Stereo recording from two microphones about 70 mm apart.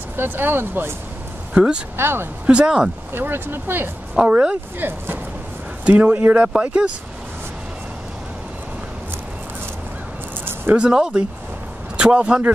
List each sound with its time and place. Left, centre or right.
0.1 s speech: right
1.5 s speech: centre
2.0 s speech: right
2.4 s speech: centre
3.1 s speech: right
4.1 s speech: centre
4.7 s speech: right
10.7 s a man's voice: centre